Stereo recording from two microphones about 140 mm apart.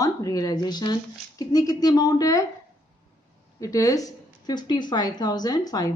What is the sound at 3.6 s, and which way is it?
Speech, 25° left (ahead or behind).